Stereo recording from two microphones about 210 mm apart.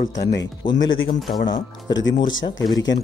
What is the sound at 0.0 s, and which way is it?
Speech, 40° left (ahead or behind).